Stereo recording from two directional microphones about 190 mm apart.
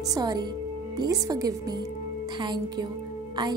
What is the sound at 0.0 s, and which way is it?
A woman's voice, 20° right (ahead or behind).